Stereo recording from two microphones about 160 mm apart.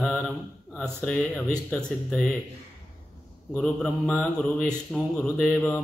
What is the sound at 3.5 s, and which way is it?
Mantra, 5° left (ahead or behind).